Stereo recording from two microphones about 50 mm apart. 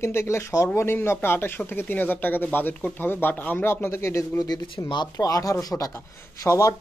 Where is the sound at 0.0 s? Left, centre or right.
Left.